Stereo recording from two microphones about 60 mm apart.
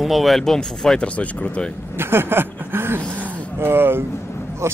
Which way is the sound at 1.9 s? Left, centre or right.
Right.